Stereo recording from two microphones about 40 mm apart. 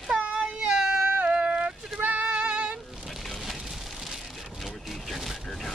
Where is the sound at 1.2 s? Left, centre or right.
Right.